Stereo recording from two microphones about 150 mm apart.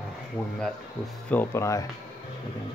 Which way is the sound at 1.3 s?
15° left (ahead or behind).